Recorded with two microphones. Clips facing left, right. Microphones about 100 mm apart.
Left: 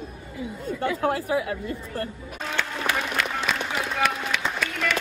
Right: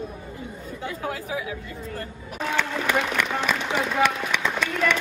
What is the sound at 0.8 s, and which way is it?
Speech, 70° left (ahead or behind).